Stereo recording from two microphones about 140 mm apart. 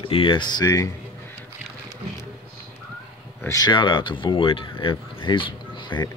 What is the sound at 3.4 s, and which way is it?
Speech, 25° left (ahead or behind).